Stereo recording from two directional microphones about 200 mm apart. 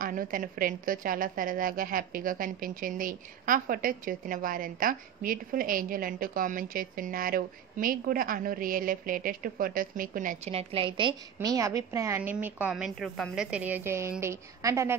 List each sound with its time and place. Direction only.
0.0 s a woman's voice: 45° right (ahead or behind)
10.5 s a woman's voice: 30° right (ahead or behind)